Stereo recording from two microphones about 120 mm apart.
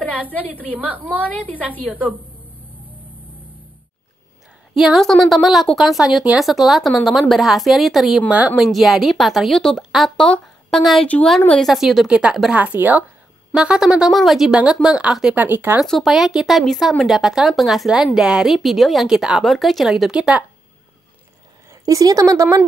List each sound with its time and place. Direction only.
0.7 s speech: 15° right (ahead or behind)
1.2 s a woman's voice: 10° left (ahead or behind)
4.7 s a woman's voice: centre (ahead or behind)
15.8 s speech: centre (ahead or behind)
21.6 s a woman's voice: 30° right (ahead or behind)